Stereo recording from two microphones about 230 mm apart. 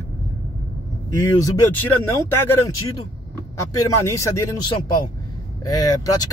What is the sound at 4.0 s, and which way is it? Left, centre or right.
Speech, centre.